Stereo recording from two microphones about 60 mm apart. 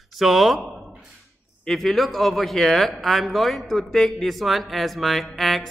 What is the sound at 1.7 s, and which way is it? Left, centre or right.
Speech, centre.